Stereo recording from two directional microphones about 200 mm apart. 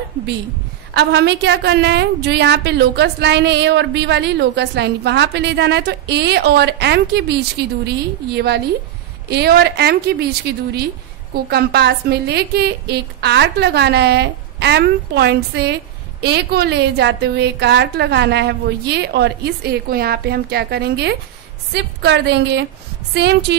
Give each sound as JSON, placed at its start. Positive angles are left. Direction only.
{"t": 0.9, "sound": "a woman's voice", "side_deg": -55}